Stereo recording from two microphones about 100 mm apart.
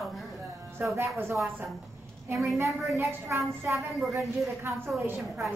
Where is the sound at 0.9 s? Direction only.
25° right (ahead or behind).